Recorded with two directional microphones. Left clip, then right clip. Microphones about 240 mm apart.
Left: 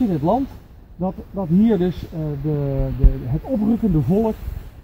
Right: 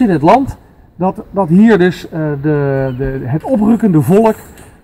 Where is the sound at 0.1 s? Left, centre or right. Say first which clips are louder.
Right 11 dB; right.